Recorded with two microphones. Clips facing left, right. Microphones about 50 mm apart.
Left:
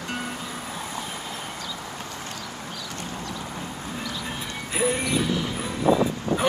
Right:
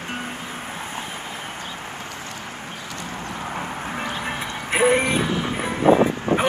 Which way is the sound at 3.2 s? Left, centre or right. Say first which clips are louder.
Right 4 dB; right.